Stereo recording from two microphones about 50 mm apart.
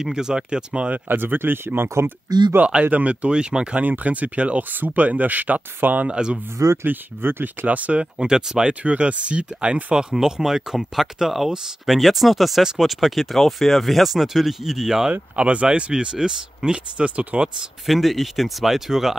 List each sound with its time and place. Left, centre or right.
0.0 s speech: centre
0.9 s speech: right
2.6 s speech: right
3.8 s speech: right
6.0 s speech: centre
6.8 s speech: right
7.6 s speech: right
8.2 s speech: centre
8.8 s speech: right; by 15.1 s centre
15.3 s speech: right
17.3 s speech: right
17.8 s speech: centre